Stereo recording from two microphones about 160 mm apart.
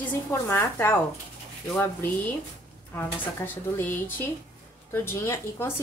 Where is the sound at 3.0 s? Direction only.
10° left (ahead or behind).